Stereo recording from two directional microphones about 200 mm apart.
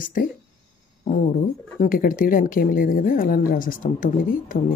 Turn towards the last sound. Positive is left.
turn(degrees=40)  # may be behind; listen again after turning